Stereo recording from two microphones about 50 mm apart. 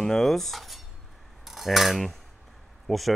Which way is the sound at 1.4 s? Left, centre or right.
Centre.